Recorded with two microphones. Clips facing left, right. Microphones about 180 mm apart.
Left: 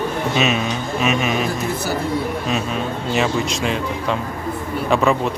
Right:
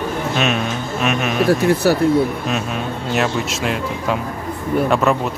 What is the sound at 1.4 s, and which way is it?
Speech, 75° right (ahead or behind).